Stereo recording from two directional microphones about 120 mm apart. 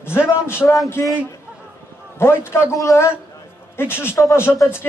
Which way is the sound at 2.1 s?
20° left (ahead or behind).